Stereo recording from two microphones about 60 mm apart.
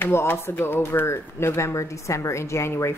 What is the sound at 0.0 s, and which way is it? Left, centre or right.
A woman's voice, left.